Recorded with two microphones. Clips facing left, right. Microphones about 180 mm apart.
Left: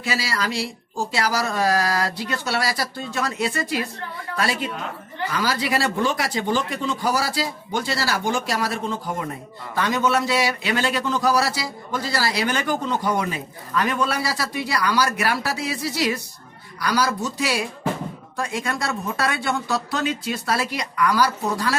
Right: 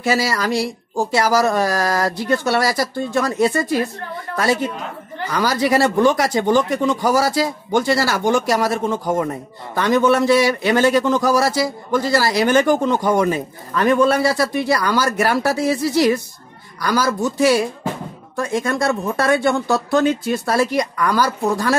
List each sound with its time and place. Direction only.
0.0 s a man's voice: 45° right (ahead or behind)
5.3 s a man's voice: 45° right (ahead or behind)